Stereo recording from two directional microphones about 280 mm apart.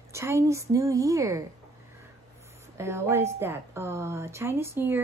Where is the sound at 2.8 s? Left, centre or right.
Centre.